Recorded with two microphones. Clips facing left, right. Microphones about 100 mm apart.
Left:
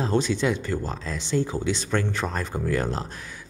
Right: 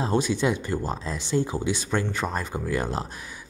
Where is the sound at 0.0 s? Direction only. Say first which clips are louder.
Even; 15° right (ahead or behind).